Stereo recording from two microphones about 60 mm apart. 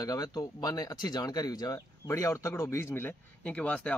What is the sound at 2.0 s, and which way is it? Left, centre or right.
Speech, left.